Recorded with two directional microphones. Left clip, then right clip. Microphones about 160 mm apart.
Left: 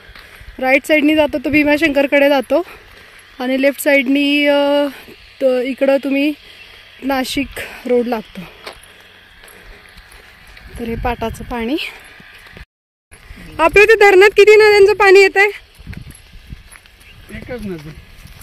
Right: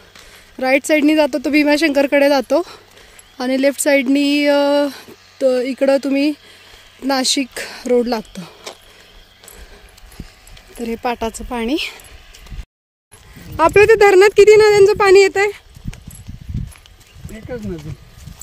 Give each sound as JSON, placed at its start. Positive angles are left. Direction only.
{"t": 0.6, "sound": "speech", "side_deg": 0}
{"t": 8.3, "sound": "a sound", "side_deg": -5}
{"t": 10.8, "sound": "speech", "side_deg": -5}
{"t": 13.6, "sound": "speech", "side_deg": -5}